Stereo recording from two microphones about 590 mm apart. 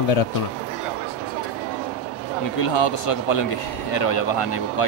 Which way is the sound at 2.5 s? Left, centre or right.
Left.